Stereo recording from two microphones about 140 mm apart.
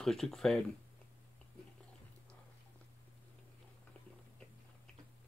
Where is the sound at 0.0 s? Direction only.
5° left (ahead or behind).